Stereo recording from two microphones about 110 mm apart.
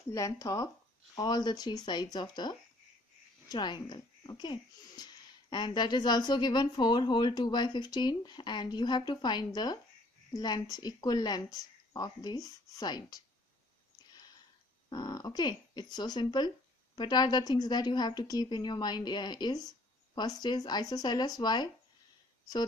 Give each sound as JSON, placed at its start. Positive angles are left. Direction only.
{"t": 0.1, "sound": "speech", "side_deg": 30}
{"t": 14.9, "sound": "speech", "side_deg": 40}